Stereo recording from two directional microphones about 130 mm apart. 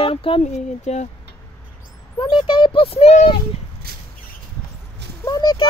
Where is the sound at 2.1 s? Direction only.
40° left (ahead or behind); by 3.3 s 55° left (ahead or behind).